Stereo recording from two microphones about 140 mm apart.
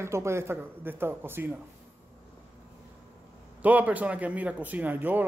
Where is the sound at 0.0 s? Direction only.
20° right (ahead or behind).